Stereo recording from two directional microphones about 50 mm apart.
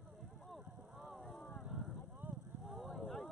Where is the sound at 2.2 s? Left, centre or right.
Right.